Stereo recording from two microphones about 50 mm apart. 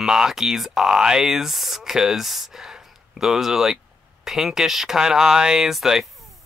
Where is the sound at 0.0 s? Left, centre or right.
Centre.